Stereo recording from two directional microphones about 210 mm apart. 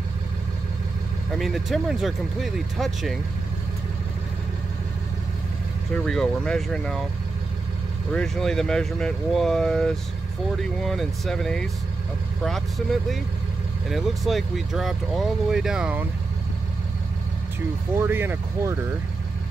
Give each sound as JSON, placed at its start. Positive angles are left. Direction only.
{"t": 1.4, "sound": "speech", "side_deg": 0}
{"t": 6.0, "sound": "speech", "side_deg": 5}
{"t": 8.1, "sound": "speech", "side_deg": 5}
{"t": 17.9, "sound": "speech", "side_deg": -10}